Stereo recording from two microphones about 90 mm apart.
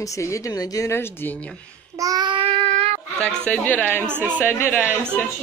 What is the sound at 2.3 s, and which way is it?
Child singing, 85° right.